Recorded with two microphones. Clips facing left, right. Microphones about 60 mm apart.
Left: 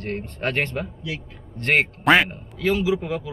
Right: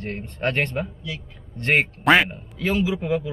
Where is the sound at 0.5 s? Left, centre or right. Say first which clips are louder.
Right 1 dB; centre.